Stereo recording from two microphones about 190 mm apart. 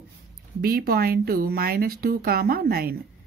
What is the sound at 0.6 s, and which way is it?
Speech, 50° right (ahead or behind).